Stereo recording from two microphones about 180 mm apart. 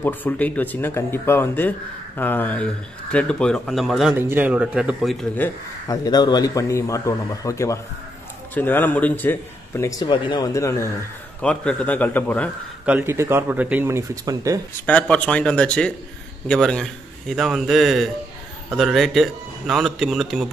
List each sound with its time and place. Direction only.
0.0 s a man's voice: 10° left (ahead or behind)
4.2 s speech: 10° right (ahead or behind)
5.9 s a man's voice: 20° left (ahead or behind)
12.8 s speech: 10° right (ahead or behind)
14.9 s speech: 5° left (ahead or behind)